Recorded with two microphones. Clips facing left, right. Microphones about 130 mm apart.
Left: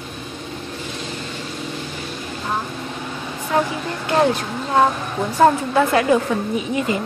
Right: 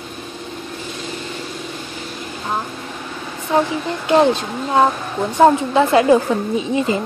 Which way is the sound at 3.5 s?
25° right (ahead or behind).